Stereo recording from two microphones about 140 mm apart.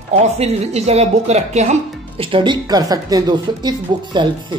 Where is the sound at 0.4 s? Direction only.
50° right (ahead or behind).